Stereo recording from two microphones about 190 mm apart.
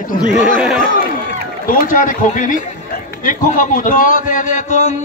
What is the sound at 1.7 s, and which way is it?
A man's voice, 45° left (ahead or behind).